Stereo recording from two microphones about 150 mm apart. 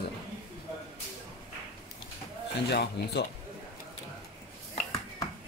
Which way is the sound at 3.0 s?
90° left.